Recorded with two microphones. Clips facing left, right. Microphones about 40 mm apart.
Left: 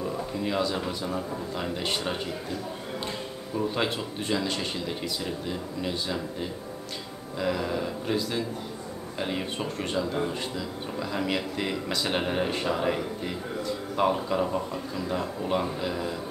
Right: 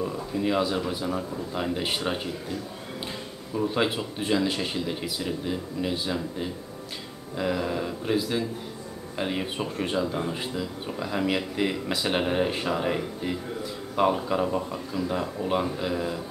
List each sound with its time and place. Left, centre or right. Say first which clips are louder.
0.0 s a sound: right 2 dB; centre
0.8 s speech: right 2 dB; centre
3.5 s speech: right 2 dB; centre
7.3 s speech: right 1 dB; centre